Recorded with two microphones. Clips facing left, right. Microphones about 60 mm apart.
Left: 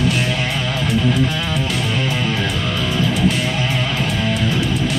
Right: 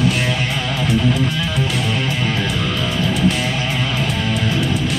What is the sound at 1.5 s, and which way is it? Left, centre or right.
Music, centre.